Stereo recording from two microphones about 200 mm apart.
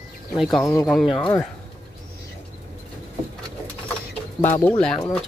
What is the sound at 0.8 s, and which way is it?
Speech, centre (ahead or behind).